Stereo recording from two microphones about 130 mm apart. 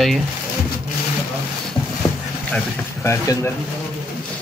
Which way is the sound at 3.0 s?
20° left (ahead or behind).